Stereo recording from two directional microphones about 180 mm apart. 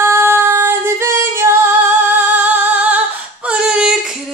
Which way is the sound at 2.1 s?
10° right (ahead or behind).